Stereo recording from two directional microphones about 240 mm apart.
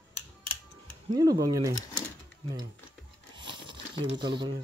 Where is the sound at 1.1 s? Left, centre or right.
Centre.